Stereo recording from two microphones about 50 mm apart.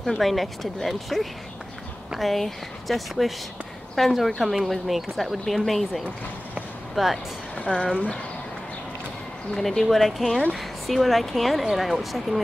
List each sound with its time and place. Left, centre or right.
0.0 s a woman's voice: centre
7.9 s speech: left
9.5 s a woman's voice: centre